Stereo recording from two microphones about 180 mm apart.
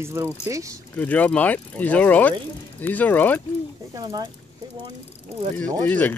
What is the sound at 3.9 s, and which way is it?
Speech, 20° right (ahead or behind).